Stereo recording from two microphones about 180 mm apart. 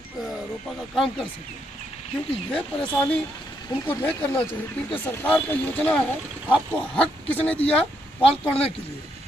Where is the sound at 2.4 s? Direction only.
5° left (ahead or behind).